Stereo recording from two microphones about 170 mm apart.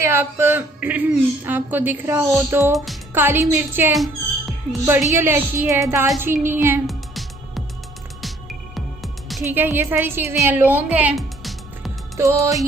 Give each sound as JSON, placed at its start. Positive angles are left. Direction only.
{"t": 0.0, "sound": "speech", "side_deg": -15}
{"t": 3.9, "sound": "music", "side_deg": 0}
{"t": 5.1, "sound": "speech", "side_deg": -15}
{"t": 6.9, "sound": "music", "side_deg": 0}
{"t": 8.7, "sound": "music", "side_deg": 0}
{"t": 9.4, "sound": "speech", "side_deg": -10}
{"t": 10.4, "sound": "music", "side_deg": -10}
{"t": 12.2, "sound": "music", "side_deg": -20}